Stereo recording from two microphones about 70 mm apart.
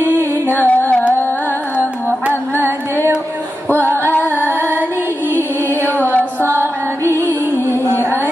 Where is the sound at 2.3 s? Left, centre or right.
Right.